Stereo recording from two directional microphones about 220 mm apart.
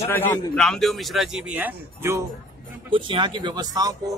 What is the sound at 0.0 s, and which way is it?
Speech, 10° left (ahead or behind).